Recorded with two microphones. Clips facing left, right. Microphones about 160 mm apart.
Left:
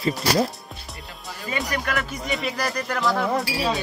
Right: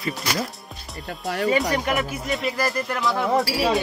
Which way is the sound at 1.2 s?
70° right (ahead or behind).